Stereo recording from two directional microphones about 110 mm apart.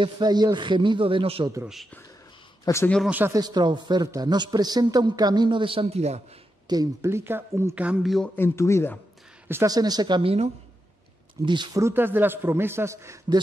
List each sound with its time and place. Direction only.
0.0 s speech: 40° right (ahead or behind); by 1.5 s 55° right (ahead or behind)
2.6 s speech: 25° left (ahead or behind)
3.1 s speech: 15° right (ahead or behind)
3.3 s speech: 40° right (ahead or behind)
5.9 s speech: 75° right (ahead or behind)
6.7 s speech: 35° right (ahead or behind)
7.1 s a man's voice: 20° right (ahead or behind)
7.8 s speech: 10° right (ahead or behind)
8.4 s speech: 25° left (ahead or behind)
9.7 s speech: 35° right (ahead or behind)
11.4 s speech: 40° right (ahead or behind)
11.8 s a man's voice: 20° right (ahead or behind)